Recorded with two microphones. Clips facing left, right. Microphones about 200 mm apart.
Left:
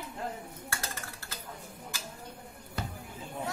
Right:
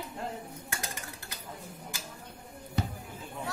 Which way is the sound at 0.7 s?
15° right (ahead or behind).